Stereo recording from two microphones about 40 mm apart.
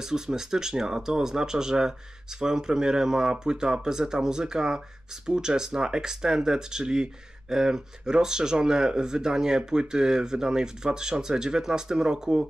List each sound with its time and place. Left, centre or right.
0.0 s speech: centre